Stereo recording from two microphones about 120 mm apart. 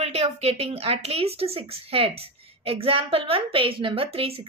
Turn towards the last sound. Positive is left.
turn(degrees=-50)  # may be behind; listen again after turning